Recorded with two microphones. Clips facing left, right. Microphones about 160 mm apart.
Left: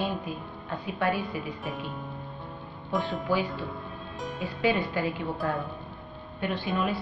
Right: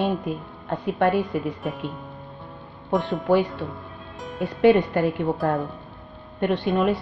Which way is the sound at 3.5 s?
Centre (ahead or behind).